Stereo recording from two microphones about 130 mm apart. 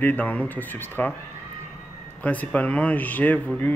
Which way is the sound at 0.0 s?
10° left (ahead or behind).